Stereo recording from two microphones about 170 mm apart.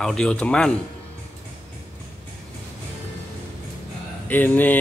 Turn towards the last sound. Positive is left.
turn(degrees=10)  # may be behind; listen again after turning